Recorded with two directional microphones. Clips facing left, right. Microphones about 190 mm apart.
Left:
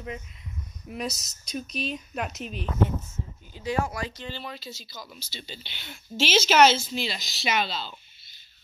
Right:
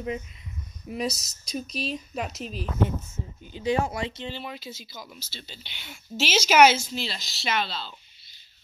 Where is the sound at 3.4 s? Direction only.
20° right (ahead or behind).